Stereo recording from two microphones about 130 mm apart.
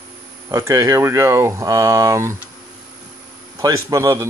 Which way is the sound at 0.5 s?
25° right (ahead or behind).